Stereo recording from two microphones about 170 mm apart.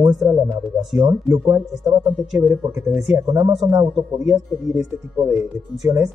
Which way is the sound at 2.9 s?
5° right (ahead or behind).